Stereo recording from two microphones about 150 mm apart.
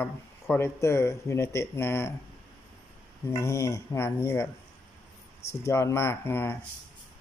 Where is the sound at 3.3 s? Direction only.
20° left (ahead or behind).